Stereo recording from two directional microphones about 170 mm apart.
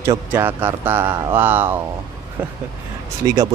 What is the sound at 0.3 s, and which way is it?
Speech, 10° right (ahead or behind).